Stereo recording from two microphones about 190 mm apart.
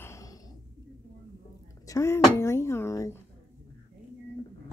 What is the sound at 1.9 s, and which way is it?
Speech, 15° left (ahead or behind).